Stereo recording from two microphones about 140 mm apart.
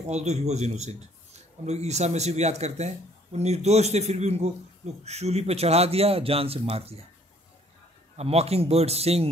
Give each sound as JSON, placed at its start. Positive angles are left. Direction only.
{"t": 0.1, "sound": "a man's voice", "side_deg": -55}
{"t": 8.2, "sound": "a man's voice", "side_deg": -50}